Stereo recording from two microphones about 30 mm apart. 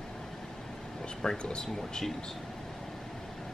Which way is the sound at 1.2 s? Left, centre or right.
Centre.